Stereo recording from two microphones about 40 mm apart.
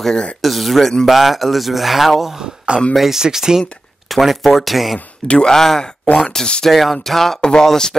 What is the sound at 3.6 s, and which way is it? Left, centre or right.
Speech, centre.